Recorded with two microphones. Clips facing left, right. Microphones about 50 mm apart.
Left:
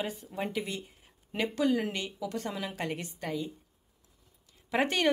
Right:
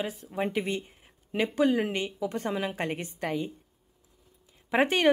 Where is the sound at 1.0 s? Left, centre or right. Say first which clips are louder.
Right 2 dB; centre.